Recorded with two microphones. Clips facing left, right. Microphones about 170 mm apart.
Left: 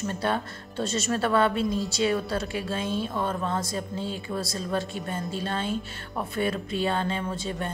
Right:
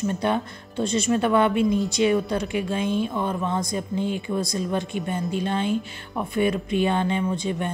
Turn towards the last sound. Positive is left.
turn(degrees=-15)  # may be behind; listen again after turning